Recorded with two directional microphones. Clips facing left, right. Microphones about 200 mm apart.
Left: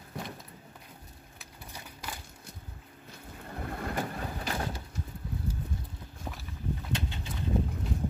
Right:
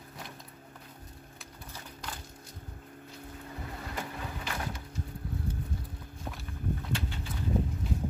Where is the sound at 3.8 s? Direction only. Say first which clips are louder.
Left 5 dB; 50° left (ahead or behind).